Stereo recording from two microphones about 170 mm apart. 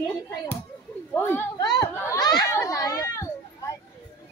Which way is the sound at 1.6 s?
25° left (ahead or behind).